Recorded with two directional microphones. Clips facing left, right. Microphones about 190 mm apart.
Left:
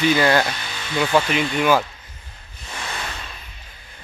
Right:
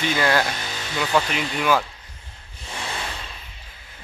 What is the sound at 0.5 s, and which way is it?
Music, 40° right (ahead or behind).